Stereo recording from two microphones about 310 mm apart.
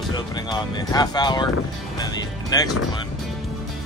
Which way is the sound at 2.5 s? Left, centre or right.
Centre.